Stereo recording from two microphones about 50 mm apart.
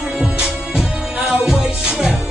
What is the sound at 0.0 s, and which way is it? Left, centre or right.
Music, centre.